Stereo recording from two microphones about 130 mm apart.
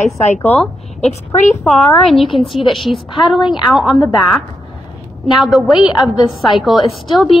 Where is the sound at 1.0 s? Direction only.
65° left (ahead or behind).